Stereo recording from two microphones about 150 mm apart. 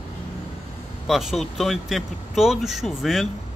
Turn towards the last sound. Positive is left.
turn(degrees=0)  # may be behind; listen again after turning